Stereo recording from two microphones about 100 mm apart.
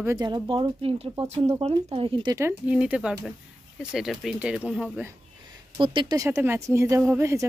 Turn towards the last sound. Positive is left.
turn(degrees=-25)  # may be behind; listen again after turning